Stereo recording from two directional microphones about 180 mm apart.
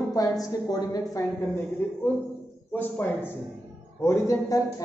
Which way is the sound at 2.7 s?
10° left (ahead or behind).